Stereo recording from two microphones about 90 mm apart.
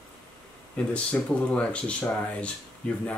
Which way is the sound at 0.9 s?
15° left (ahead or behind).